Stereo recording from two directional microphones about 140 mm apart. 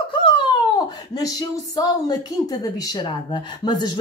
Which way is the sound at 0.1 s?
35° left (ahead or behind).